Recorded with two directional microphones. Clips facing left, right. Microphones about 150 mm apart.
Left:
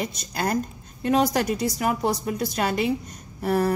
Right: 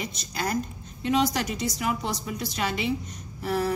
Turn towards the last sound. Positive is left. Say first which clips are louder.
# left 4 dB
turn(degrees=50)  # may be behind; listen again after turning